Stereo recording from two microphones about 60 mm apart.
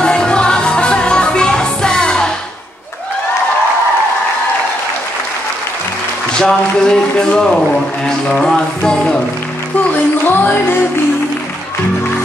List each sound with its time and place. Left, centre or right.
0.0 s music: centre
6.3 s speech: centre
10.2 s music: left